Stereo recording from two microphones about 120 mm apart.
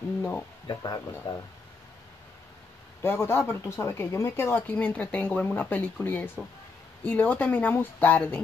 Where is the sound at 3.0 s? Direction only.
20° left (ahead or behind).